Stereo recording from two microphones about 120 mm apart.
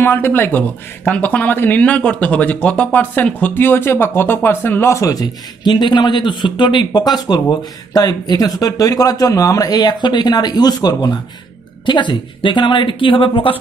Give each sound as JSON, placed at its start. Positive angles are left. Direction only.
{"t": 0.0, "sound": "a woman's voice", "side_deg": 20}